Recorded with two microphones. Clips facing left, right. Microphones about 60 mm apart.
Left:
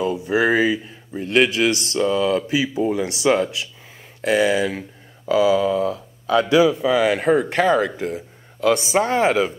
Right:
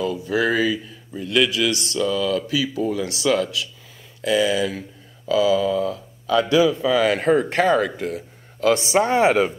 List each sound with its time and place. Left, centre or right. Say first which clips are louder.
0.0 s a man's voice: left 2 dB; left
4.2 s a man's voice: left 2 dB; left
7.0 s speech: even; centre
7.8 s speech: left 1 dB; centre
8.6 s speech: even; centre